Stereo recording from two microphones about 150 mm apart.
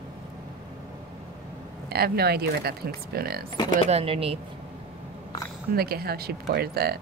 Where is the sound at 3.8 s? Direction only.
40° right (ahead or behind).